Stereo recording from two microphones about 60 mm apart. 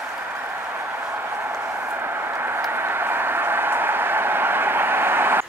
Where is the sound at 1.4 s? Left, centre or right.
Right.